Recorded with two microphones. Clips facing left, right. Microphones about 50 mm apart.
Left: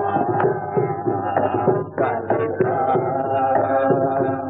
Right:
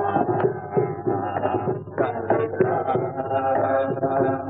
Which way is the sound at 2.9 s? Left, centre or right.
Left.